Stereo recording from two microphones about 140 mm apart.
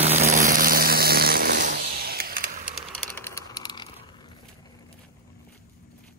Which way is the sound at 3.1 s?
20° left (ahead or behind).